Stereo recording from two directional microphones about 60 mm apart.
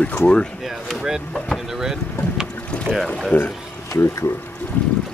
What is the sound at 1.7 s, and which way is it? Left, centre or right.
Vehicle, centre.